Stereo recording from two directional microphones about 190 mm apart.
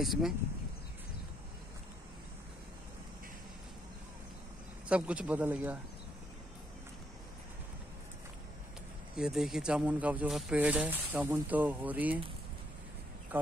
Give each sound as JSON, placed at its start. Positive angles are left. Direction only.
{"t": 0.0, "sound": "speech", "side_deg": 0}
{"t": 4.8, "sound": "speech", "side_deg": -5}
{"t": 9.1, "sound": "speech", "side_deg": -5}
{"t": 13.3, "sound": "speech", "side_deg": -10}